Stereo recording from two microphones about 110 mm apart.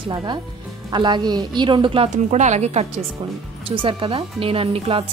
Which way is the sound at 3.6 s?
55° right (ahead or behind).